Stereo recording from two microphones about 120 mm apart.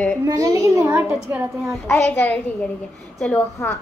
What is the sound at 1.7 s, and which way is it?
A child's voice, 5° left (ahead or behind).